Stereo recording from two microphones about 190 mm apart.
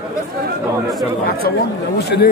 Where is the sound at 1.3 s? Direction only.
55° left (ahead or behind).